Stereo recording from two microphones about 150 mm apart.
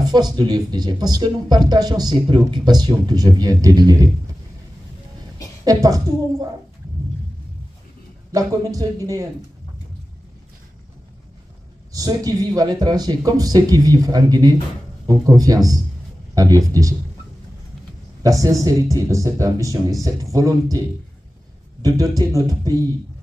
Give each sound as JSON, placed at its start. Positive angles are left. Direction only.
{"t": 0.1, "sound": "speech", "side_deg": -30}
{"t": 5.7, "sound": "speech", "side_deg": -25}
{"t": 8.3, "sound": "speech", "side_deg": -25}
{"t": 11.9, "sound": "speech", "side_deg": -25}
{"t": 18.2, "sound": "speech", "side_deg": -20}
{"t": 21.8, "sound": "speech", "side_deg": -20}